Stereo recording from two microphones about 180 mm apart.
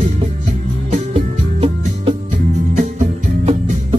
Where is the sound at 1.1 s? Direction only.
30° right (ahead or behind).